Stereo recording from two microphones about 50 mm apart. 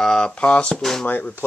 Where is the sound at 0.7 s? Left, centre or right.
Centre.